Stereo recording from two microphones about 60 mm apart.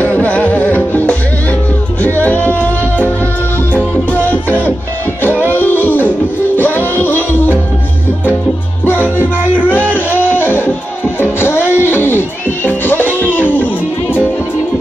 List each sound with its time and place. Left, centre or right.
0.0 s music: left
9.9 s music: left